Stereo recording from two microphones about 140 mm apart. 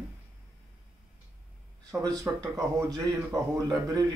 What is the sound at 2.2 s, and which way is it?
Speech, 25° right (ahead or behind).